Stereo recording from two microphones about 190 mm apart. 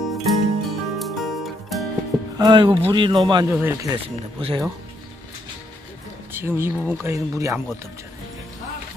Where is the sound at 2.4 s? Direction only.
25° right (ahead or behind).